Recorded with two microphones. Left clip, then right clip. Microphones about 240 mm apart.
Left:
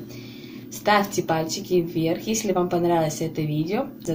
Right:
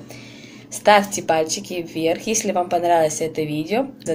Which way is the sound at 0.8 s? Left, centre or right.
Right.